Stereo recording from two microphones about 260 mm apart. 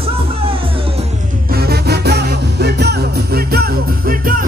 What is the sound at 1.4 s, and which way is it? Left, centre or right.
Music, right.